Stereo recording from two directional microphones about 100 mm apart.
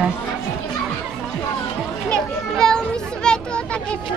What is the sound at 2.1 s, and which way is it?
Children playing, 5° left (ahead or behind).